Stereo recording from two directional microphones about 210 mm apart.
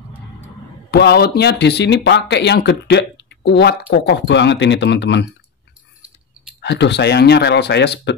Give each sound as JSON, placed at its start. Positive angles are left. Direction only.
{"t": 0.9, "sound": "speech", "side_deg": 50}
{"t": 6.6, "sound": "speech", "side_deg": 55}